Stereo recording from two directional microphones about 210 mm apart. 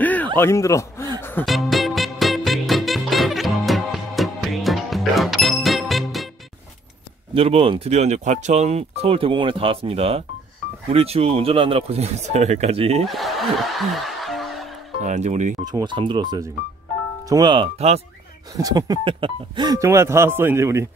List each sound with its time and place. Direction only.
0.0 s a sound: 10° left (ahead or behind)
0.4 s a man's voice: 15° left (ahead or behind)
1.2 s music: 5° left (ahead or behind)
7.3 s speech: 30° right (ahead or behind)
13.0 s music: centre (ahead or behind)
15.0 s speech: 35° right (ahead or behind)
15.6 s speech: 20° right (ahead or behind)
18.6 s speech: 15° right (ahead or behind)